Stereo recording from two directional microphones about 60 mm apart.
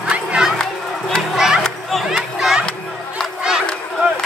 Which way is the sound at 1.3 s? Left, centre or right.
Centre.